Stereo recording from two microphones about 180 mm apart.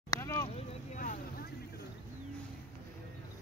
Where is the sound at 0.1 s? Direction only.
15° left (ahead or behind).